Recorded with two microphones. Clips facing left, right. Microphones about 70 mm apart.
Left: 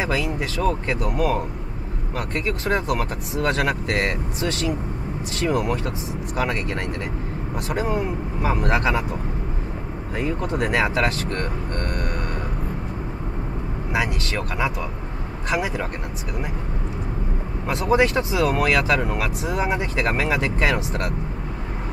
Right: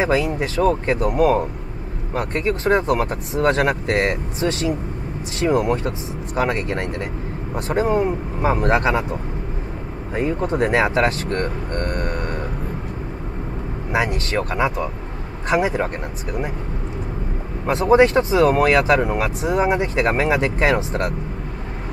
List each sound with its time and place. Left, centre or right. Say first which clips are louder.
0.0 s speech: right 5 dB; right
10.1 s speech: right 4 dB; right
13.9 s speech: right 4 dB; right
17.6 s speech: right 5 dB; right